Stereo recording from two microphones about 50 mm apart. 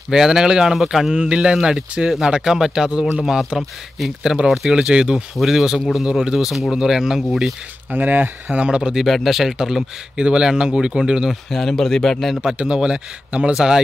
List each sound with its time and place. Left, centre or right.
0.1 s speech: centre
1.1 s speech: centre
7.9 s speech: right
8.5 s speech: centre
8.9 s speech: centre
11.5 s speech: centre
12.5 s speech: centre